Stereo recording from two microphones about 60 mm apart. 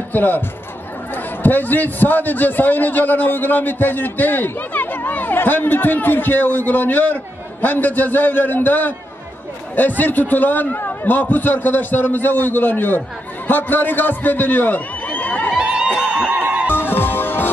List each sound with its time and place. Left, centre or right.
0.1 s a man's voice: left
15.0 s a sound: left
15.5 s music: centre
16.3 s music: right
16.7 s music: left